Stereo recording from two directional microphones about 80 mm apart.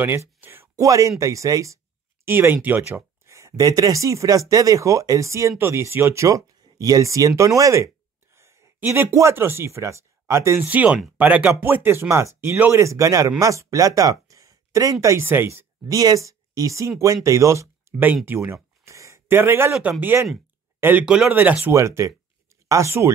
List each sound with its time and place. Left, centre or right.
0.0 s speech: right
0.7 s speech: right
2.2 s speech: right
3.3 s a sound: right
3.5 s speech: right
10.6 s speech: centre; by 15.2 s right
15.2 s speech: right
15.9 s speech: right
17.9 s a sound: right
18.2 s speech: right
21.0 s speech: centre
21.3 s speech: right
21.7 s speech: right